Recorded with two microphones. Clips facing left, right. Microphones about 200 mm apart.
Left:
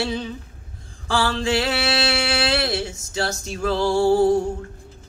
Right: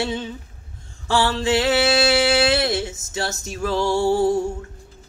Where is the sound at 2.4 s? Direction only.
25° right (ahead or behind).